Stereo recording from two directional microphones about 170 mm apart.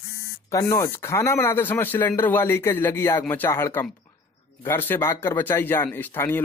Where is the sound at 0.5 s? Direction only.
20° left (ahead or behind).